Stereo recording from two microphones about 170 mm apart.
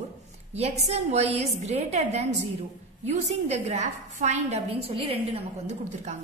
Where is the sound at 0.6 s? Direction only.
40° right (ahead or behind).